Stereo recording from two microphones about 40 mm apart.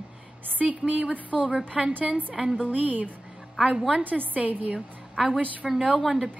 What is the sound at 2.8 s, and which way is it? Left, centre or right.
A woman's voice, right.